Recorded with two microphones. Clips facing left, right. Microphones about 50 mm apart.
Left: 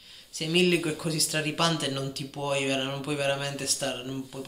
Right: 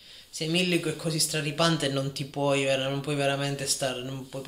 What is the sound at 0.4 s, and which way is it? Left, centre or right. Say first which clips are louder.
Speech: left 2 dB; left.